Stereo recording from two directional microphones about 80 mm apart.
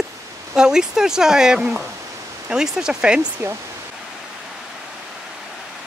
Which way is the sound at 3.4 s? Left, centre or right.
Right.